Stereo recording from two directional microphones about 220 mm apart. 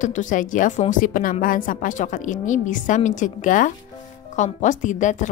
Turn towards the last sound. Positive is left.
turn(degrees=35)  # may be behind; listen again after turning